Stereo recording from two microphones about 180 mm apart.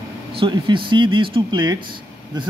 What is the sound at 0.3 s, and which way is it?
Speech, 30° right (ahead or behind).